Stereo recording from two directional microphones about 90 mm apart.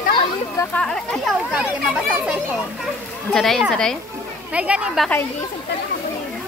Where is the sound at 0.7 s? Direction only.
10° left (ahead or behind).